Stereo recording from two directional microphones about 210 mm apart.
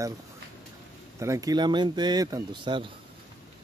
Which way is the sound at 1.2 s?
15° right (ahead or behind).